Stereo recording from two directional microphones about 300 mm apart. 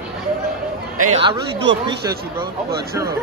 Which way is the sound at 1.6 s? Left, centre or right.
Right.